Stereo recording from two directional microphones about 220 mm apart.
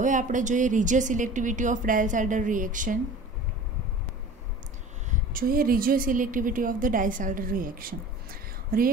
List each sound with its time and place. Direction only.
0.0 s speech: 35° right (ahead or behind)
5.1 s a woman's voice: 40° right (ahead or behind)